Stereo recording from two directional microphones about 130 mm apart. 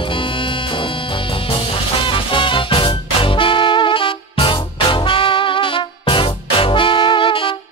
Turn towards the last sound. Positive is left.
turn(degrees=40)  # may be behind; listen again after turning